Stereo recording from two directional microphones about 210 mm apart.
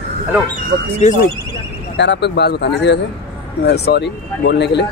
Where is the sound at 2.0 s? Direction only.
55° left (ahead or behind).